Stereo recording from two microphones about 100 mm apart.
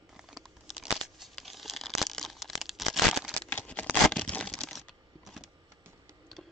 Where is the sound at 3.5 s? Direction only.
15° left (ahead or behind).